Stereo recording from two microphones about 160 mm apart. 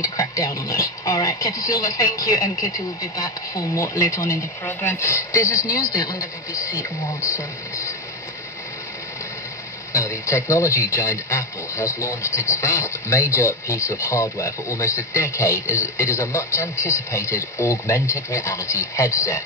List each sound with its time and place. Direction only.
0.0 s speech: 20° left (ahead or behind)
9.9 s a man's voice: 20° left (ahead or behind)